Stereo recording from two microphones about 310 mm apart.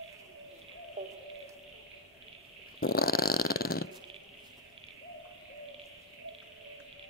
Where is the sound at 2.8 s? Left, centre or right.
Left.